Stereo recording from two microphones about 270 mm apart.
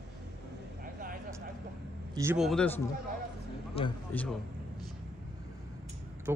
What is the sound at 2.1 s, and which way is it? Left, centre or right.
Speech, centre.